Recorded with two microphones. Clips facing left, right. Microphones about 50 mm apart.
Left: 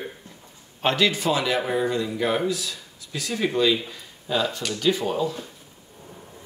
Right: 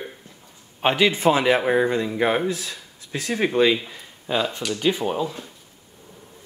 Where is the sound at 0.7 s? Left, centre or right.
Centre.